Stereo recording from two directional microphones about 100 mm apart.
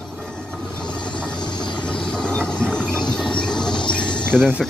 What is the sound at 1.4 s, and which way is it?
Vehicle, 45° left (ahead or behind).